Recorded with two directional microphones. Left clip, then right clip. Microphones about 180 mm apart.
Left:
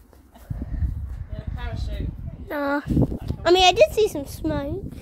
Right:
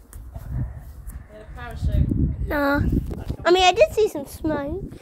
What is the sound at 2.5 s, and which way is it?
Speech, 15° right (ahead or behind).